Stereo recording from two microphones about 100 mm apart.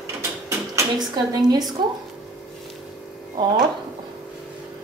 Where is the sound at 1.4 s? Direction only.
40° right (ahead or behind).